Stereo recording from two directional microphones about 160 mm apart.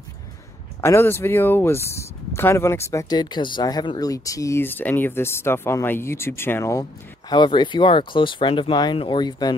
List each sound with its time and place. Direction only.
0.7 s speech: 15° left (ahead or behind)